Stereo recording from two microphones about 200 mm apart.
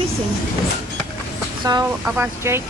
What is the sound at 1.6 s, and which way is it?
Speech, 15° right (ahead or behind).